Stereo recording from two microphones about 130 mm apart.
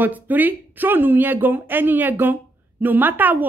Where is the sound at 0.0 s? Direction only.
15° right (ahead or behind).